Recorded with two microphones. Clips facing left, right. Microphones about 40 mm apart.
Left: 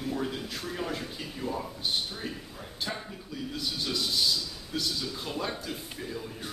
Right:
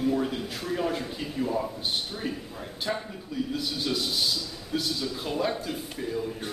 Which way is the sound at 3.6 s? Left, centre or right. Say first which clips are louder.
Right 2 dB; centre.